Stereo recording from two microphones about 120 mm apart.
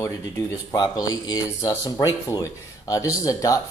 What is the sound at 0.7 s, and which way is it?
Speech, 35° left (ahead or behind).